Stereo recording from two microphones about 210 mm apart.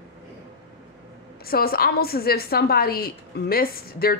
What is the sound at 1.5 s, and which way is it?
A woman's voice, 45° left (ahead or behind).